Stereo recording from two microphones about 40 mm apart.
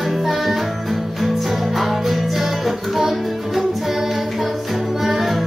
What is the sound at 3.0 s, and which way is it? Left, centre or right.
Music, centre.